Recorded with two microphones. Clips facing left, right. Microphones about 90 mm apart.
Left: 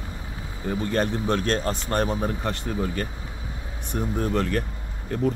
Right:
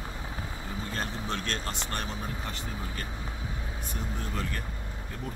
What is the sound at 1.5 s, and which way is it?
Speech, 40° left (ahead or behind).